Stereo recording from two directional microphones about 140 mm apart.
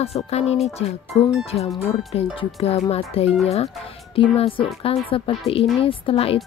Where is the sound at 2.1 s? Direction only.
40° left (ahead or behind).